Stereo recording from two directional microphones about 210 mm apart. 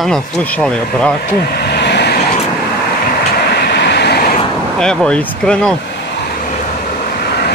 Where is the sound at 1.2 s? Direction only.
50° left (ahead or behind).